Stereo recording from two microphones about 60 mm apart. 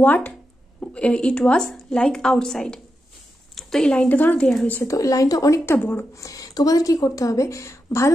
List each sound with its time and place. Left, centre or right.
0.0 s a woman's voice: left; by 2.8 s centre
3.5 s a sound: centre
3.9 s speech: left
4.4 s a woman's voice: centre
4.8 s a woman's voice: left
5.7 s speech: left
6.1 s a woman's voice: left